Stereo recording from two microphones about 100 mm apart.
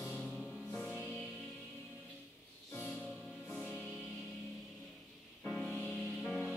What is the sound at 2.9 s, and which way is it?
Music, 5° left (ahead or behind).